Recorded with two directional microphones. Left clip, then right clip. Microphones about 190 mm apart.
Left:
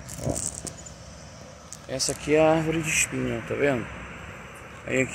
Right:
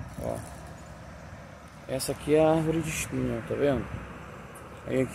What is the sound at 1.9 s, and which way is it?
Speech, 10° right (ahead or behind).